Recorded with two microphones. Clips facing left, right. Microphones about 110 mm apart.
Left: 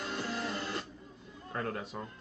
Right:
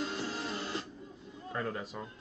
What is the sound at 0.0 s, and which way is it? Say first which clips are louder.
Music: even; 50° left (ahead or behind).